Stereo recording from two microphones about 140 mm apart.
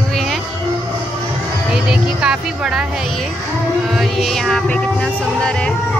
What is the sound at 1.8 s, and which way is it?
Music, 5° right (ahead or behind).